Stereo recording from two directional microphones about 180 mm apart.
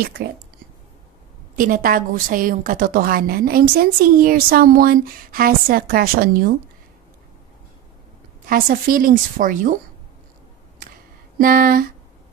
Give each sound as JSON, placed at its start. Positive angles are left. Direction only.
{"t": 1.5, "sound": "a woman's voice", "side_deg": -50}
{"t": 8.5, "sound": "a woman's voice", "side_deg": -50}
{"t": 11.3, "sound": "a woman's voice", "side_deg": -50}